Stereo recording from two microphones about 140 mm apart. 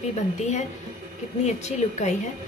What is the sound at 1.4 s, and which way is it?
Speech, 55° left (ahead or behind).